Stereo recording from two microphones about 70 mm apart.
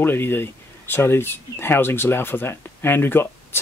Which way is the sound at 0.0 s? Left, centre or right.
Left.